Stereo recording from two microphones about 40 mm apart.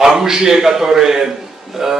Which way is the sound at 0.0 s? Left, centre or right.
Centre.